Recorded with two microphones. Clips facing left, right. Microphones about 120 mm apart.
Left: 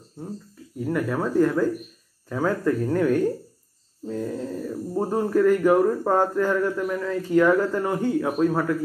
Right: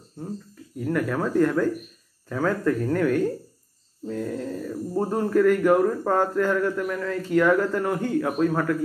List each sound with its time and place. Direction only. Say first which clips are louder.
0.7 s speech: even; 15° left (ahead or behind)